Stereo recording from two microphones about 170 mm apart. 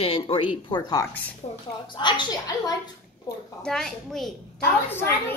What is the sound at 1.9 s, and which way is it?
Speech, 25° left (ahead or behind).